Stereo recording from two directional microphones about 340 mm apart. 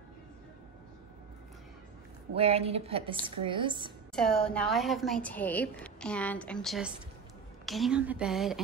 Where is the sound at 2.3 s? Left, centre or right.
Centre.